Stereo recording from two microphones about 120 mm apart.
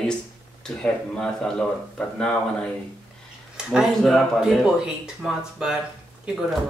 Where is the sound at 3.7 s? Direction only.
5° right (ahead or behind).